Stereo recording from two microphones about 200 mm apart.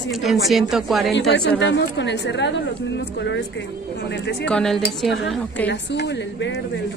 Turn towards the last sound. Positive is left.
turn(degrees=60)  # may be behind; listen again after turning